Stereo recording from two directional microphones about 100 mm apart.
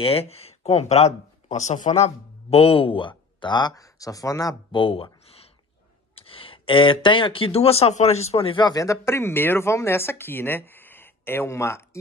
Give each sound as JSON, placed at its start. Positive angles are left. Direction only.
{"t": 0.0, "sound": "a man's voice", "side_deg": 80}
{"t": 4.7, "sound": "a sound", "side_deg": 60}
{"t": 6.1, "sound": "speech", "side_deg": 65}
{"t": 8.5, "sound": "speech", "side_deg": 45}
{"t": 8.8, "sound": "speech", "side_deg": 30}